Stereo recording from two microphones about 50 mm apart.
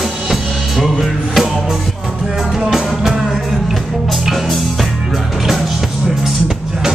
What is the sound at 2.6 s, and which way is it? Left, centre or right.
Music, centre.